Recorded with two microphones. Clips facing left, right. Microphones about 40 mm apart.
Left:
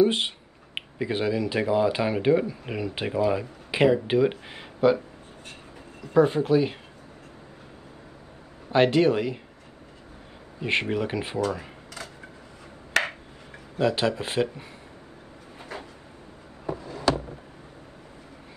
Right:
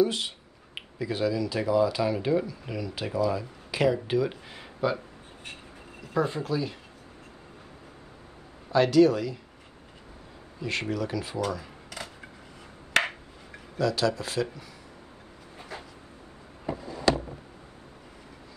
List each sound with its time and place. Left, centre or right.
0.0 s speech: left
6.2 s speech: left
8.7 s speech: left
10.6 s speech: left
13.7 s speech: left